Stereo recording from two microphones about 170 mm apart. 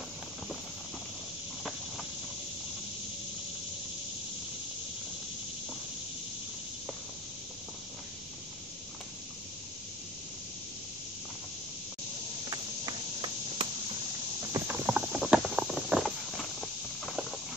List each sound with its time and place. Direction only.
12.4 s clip-clop: 25° right (ahead or behind)
14.7 s clip-clop: 5° right (ahead or behind)